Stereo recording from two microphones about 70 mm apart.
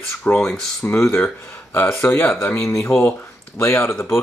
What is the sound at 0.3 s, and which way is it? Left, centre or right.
Speech, left.